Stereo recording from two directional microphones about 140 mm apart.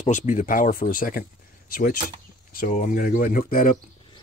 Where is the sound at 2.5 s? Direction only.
80° left.